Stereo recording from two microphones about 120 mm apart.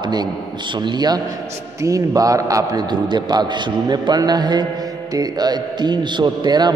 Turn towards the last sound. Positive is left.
turn(degrees=-35)  # may be behind; listen again after turning